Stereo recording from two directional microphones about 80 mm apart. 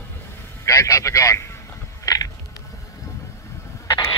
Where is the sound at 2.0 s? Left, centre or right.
Left.